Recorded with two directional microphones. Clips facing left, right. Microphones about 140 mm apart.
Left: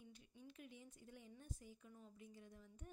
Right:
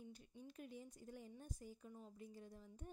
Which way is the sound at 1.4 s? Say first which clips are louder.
Right 3 dB; 40° right (ahead or behind).